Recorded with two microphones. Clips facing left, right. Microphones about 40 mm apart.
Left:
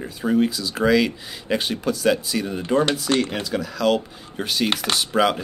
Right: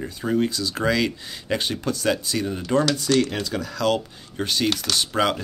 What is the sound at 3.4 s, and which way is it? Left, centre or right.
Speech, centre.